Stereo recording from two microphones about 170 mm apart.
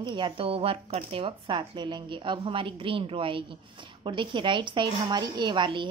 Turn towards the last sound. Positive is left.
turn(degrees=-30)  # may be behind; listen again after turning